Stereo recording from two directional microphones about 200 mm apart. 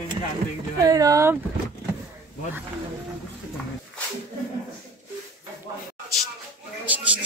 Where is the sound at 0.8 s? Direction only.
15° right (ahead or behind).